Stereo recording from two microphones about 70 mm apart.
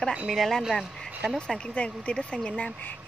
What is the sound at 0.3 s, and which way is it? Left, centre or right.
Speech, centre.